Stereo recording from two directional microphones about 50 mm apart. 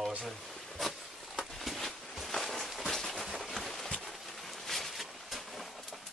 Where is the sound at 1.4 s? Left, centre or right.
Centre.